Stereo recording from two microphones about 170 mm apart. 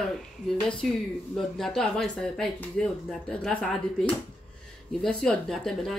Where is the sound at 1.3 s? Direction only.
Centre (ahead or behind).